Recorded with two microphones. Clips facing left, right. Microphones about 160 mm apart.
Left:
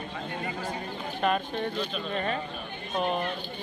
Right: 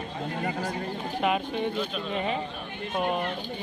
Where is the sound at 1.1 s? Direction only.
10° right (ahead or behind).